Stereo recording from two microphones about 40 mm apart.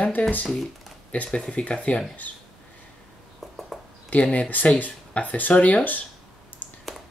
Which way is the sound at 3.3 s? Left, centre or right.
Centre.